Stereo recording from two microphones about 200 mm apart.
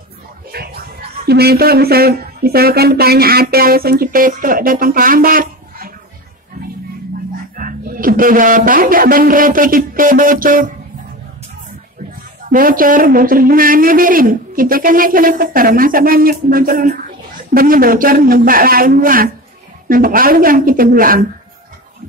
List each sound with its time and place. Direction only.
0.5 s speech: 50° right (ahead or behind)
7.5 s speech: 45° right (ahead or behind)
12.4 s a man's voice: 45° right (ahead or behind)